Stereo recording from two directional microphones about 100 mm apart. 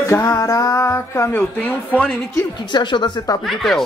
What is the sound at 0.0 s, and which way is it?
Music, 30° left (ahead or behind).